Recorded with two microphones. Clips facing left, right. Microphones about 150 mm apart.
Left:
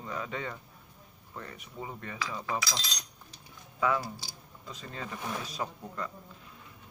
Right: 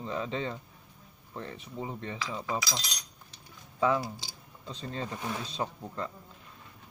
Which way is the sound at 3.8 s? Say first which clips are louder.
Right 2 dB; 30° right (ahead or behind).